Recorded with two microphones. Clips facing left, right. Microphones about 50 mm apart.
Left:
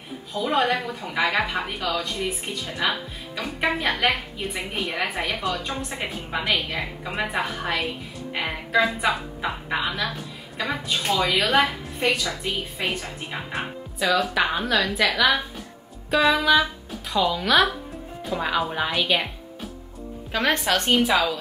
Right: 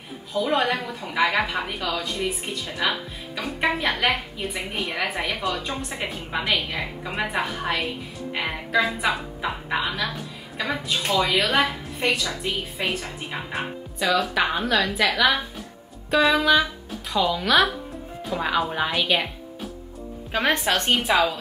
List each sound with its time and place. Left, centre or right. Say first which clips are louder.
0.3 s a woman's voice: even; centre
20.5 s speech: even; right